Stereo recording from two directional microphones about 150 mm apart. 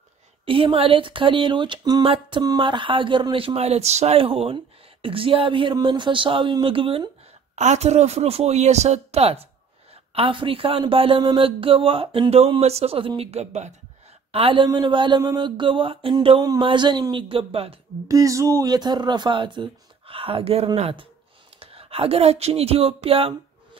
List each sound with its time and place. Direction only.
0.5 s speech: 35° right (ahead or behind)
7.5 s speech: 50° right (ahead or behind)
14.3 s speech: 35° right (ahead or behind)
18.0 s speech: 20° right (ahead or behind); by 23.8 s 40° right (ahead or behind)